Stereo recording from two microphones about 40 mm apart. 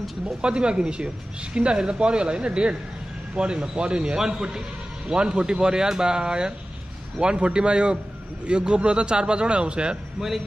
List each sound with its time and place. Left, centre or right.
0.4 s speech: right